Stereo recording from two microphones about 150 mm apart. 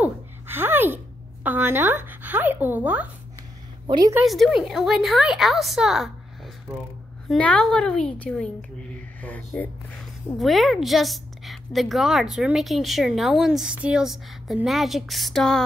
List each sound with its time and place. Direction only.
0.0 s a sound: 15° right (ahead or behind)
3.8 s a woman's voice: 30° right (ahead or behind)
4.2 s a woman's voice: 5° right (ahead or behind)
7.2 s a woman's voice: 5° left (ahead or behind)